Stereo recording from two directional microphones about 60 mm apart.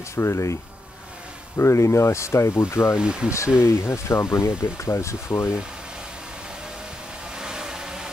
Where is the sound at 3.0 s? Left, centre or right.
Centre.